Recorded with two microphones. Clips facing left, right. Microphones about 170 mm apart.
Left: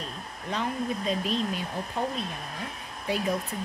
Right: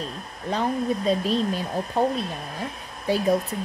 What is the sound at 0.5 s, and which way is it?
A woman's voice, 35° right (ahead or behind).